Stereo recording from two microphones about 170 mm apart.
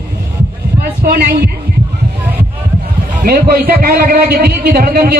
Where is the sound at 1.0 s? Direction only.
65° right (ahead or behind).